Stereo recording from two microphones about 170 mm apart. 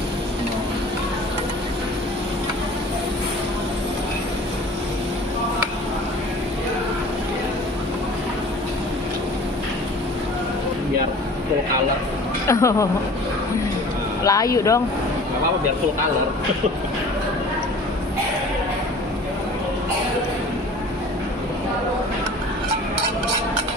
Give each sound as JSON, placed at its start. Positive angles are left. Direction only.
{"t": 12.4, "sound": "speech", "side_deg": 15}
{"t": 14.2, "sound": "speech", "side_deg": 20}